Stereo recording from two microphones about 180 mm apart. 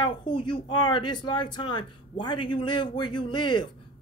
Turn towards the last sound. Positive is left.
turn(degrees=25)  # may be behind; listen again after turning